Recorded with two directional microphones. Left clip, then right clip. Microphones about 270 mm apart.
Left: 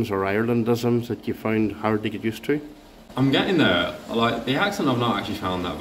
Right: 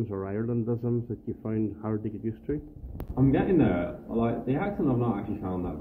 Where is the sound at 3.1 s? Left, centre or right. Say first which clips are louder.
Left 4 dB; left.